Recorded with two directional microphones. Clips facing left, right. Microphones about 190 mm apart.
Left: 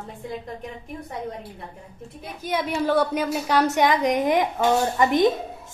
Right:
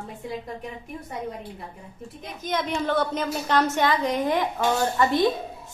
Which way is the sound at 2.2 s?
10° left (ahead or behind).